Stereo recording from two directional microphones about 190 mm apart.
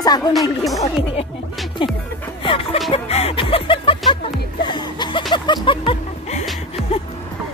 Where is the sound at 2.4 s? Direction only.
30° left (ahead or behind).